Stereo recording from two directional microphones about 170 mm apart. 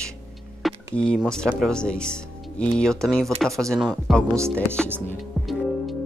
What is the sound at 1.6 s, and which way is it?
Speech, 5° left (ahead or behind).